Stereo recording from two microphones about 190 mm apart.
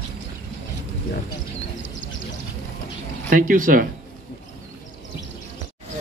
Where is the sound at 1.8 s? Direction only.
75° left (ahead or behind).